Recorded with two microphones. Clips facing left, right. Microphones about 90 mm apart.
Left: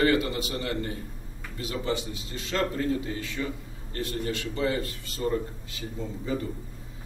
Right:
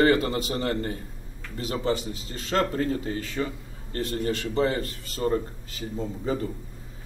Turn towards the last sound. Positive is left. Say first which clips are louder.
# right 3 dB
turn(degrees=-40)  # may be behind; listen again after turning